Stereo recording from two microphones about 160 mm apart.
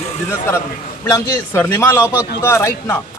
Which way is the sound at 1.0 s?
15° left (ahead or behind).